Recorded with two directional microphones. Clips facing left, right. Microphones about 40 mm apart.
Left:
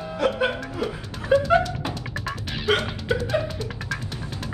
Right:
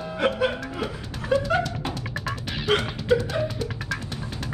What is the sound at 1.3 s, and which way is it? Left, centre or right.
Music, centre.